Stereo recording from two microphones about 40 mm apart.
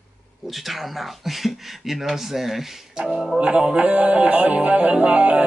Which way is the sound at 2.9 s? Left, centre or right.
Centre.